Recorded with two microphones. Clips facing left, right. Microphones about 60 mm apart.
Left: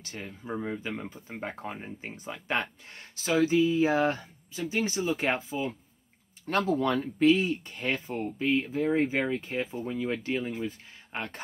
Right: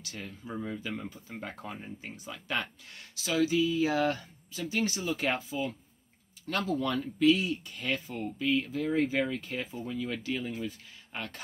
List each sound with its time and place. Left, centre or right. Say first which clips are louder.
0.0 s speech: left 2 dB; left
6.4 s speech: left 4 dB; left